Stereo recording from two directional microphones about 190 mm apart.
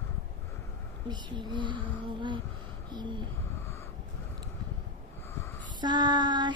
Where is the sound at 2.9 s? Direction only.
25° right (ahead or behind).